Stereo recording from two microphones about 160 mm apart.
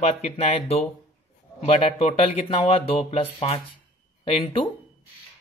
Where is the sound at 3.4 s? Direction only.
35° left (ahead or behind).